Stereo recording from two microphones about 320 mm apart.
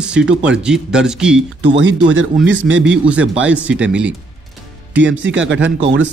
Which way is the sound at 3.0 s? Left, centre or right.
Centre.